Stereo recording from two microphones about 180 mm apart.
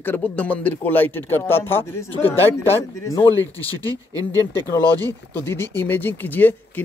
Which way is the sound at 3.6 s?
20° right (ahead or behind).